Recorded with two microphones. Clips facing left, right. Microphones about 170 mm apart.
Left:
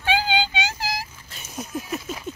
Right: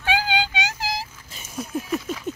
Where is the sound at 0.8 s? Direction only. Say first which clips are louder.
Right 1 dB; 25° right (ahead or behind).